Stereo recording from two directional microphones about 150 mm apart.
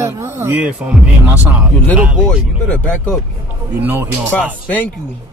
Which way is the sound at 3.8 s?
15° right (ahead or behind).